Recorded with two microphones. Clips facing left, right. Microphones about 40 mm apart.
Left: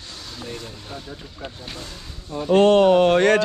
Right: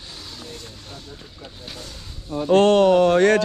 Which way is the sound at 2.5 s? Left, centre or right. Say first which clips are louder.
Left 1 dB; right.